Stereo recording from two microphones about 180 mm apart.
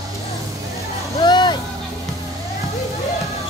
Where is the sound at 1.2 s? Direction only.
25° left (ahead or behind).